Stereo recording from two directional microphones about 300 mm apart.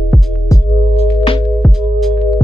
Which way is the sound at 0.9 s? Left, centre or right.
Centre.